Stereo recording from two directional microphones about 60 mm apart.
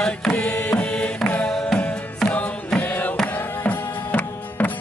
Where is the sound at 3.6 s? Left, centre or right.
Left.